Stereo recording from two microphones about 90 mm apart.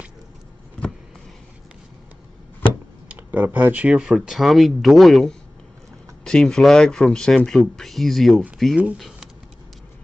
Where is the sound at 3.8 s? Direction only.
10° right (ahead or behind).